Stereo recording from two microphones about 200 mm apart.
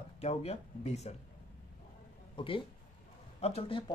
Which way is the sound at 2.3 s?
25° left (ahead or behind).